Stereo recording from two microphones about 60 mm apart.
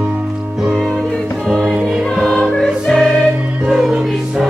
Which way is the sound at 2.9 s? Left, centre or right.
Centre.